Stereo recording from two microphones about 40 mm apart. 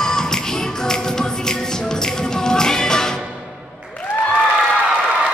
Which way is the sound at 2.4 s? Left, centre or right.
Centre.